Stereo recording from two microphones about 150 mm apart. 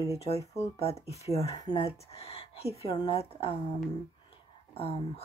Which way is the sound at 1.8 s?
40° left (ahead or behind).